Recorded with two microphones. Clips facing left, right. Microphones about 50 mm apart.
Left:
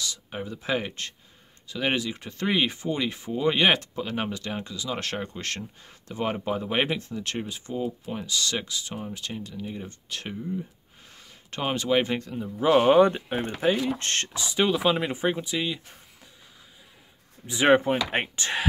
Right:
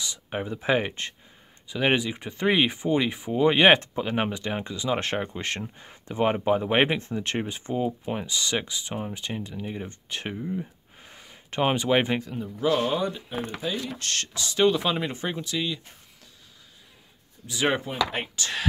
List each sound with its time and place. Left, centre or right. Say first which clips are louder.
0.0 s speech: right 2 dB; right
12.2 s speech: even; centre
12.5 s speech: left 4 dB; centre
12.8 s speech: left 9 dB; left
13.7 s speech: left 4 dB; left
14.4 s speech: right 2 dB; centre
17.5 s speech: left 6 dB; left